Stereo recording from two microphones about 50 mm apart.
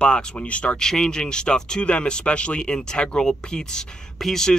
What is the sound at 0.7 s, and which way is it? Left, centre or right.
Speech, centre.